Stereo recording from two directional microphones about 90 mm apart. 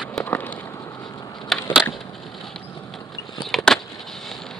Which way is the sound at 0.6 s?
35° left (ahead or behind).